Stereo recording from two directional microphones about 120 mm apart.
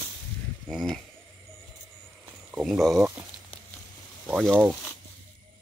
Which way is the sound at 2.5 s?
Centre (ahead or behind).